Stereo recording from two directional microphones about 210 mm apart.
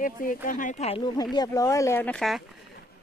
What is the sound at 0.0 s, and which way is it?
Speech, 40° left (ahead or behind).